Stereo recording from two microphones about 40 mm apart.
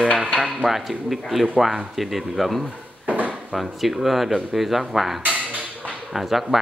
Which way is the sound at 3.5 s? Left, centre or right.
Centre.